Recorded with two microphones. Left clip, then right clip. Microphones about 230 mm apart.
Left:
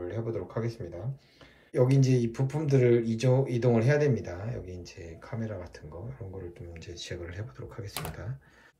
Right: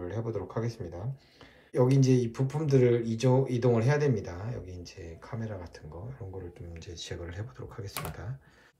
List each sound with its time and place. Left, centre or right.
0.0 s speech: centre
6.9 s speech: centre